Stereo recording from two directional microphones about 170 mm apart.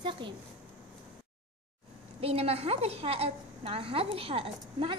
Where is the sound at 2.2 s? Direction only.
35° right (ahead or behind).